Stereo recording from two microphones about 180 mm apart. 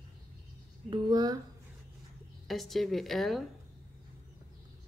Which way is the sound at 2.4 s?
Centre (ahead or behind).